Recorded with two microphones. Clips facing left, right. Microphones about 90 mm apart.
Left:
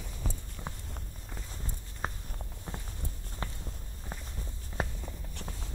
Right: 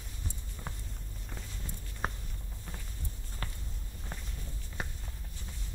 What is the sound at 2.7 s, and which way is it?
Walk, 30° left (ahead or behind).